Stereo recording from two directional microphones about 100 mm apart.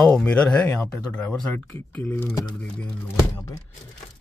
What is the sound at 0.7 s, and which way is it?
Speech, 20° left (ahead or behind).